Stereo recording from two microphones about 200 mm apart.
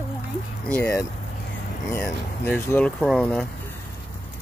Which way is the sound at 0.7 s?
10° left (ahead or behind).